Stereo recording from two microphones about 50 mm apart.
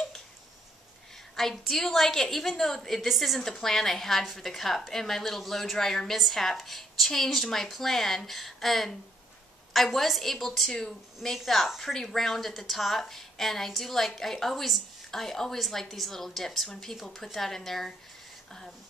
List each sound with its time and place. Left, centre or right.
1.3 s a woman's voice: centre